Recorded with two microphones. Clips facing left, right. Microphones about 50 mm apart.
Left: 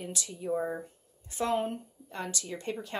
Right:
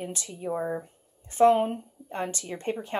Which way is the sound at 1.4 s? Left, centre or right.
Right.